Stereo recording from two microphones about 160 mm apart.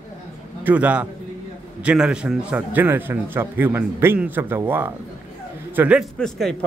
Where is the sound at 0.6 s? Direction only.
10° right (ahead or behind).